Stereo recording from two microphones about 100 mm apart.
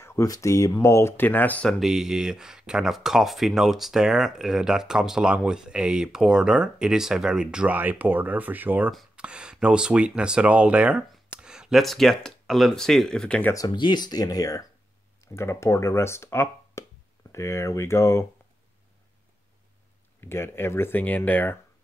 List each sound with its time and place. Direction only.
0.0 s speech: 30° left (ahead or behind)
1.7 s speech: centre (ahead or behind)
13.5 s speech: 35° left (ahead or behind)
20.2 s speech: 25° left (ahead or behind)